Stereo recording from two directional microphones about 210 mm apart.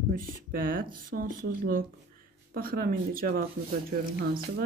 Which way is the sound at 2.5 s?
45° right (ahead or behind).